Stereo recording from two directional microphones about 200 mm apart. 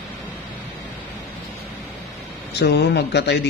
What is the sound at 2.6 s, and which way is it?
Speech, 55° left (ahead or behind).